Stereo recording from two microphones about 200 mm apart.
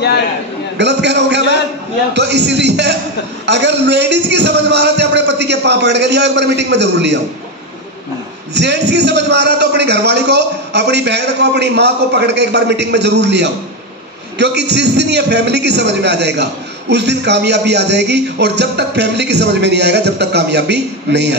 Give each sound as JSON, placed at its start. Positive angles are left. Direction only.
{"t": 0.7, "sound": "a man's voice", "side_deg": -60}
{"t": 8.5, "sound": "a man's voice", "side_deg": -60}